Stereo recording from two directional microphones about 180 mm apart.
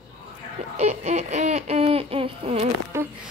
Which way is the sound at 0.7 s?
40° right (ahead or behind).